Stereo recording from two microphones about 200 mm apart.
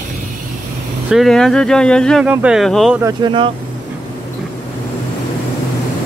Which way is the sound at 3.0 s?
20° right (ahead or behind).